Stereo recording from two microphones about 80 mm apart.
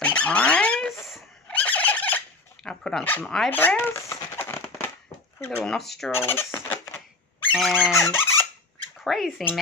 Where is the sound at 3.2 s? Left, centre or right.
Centre.